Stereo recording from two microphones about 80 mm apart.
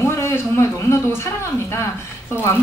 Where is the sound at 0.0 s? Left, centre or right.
Left.